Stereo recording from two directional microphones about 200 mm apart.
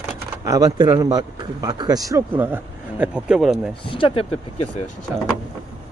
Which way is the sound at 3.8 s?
25° left (ahead or behind).